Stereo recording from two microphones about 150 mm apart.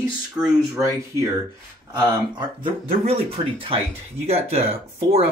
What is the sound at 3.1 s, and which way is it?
Speech, 40° right (ahead or behind).